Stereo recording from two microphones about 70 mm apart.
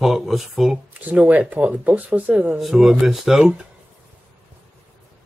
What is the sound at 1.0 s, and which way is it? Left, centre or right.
Speech, right.